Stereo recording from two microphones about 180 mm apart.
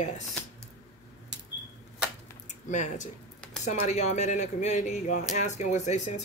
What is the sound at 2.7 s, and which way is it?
Speech, 40° left (ahead or behind).